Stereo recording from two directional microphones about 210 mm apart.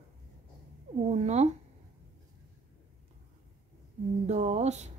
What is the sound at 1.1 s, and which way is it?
Speech, 30° right (ahead or behind).